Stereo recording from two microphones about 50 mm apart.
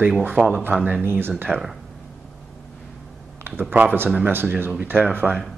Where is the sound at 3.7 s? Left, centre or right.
Right.